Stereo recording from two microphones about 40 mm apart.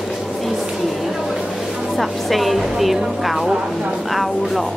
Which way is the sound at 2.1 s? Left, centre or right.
Centre.